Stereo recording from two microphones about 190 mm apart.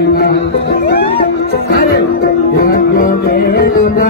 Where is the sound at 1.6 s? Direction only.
55° left (ahead or behind).